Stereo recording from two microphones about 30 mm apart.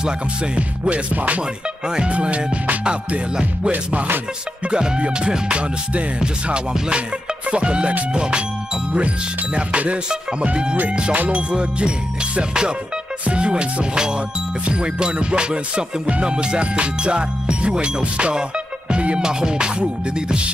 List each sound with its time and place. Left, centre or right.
0.6 s music: right
3.7 s music: right
4.6 s music: right
7.5 s music: right
9.6 s music: right
19.2 s music: right